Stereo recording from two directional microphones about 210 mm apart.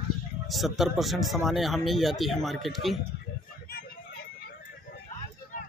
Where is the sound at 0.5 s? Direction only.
Centre (ahead or behind).